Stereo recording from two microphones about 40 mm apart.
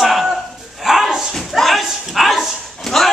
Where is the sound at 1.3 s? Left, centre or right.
Centre.